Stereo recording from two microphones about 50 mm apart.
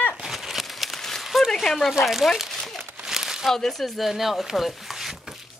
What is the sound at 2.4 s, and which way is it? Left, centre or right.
Crumpling, centre.